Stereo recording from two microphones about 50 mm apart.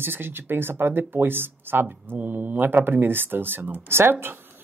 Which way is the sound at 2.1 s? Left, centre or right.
Right.